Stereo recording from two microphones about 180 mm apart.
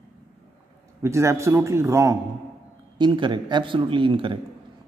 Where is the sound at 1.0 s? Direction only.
15° right (ahead or behind).